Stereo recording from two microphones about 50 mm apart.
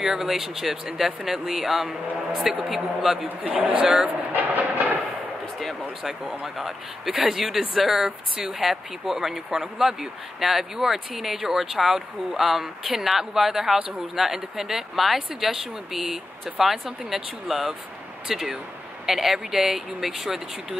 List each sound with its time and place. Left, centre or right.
0.0 s speech: centre
3.3 s speech: right
5.6 s speech: centre